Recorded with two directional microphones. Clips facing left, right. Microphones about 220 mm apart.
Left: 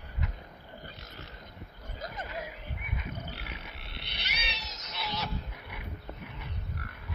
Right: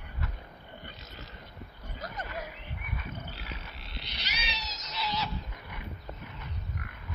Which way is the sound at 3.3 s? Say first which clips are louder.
Even; 60° left (ahead or behind).